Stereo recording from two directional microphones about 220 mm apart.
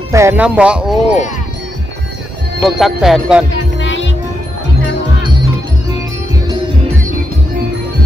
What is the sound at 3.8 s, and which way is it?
Music, 55° left (ahead or behind).